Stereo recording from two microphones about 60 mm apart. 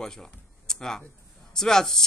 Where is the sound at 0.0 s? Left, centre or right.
Centre.